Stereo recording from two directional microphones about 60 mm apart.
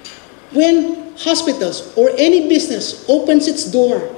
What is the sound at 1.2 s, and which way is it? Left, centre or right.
A woman's voice, left.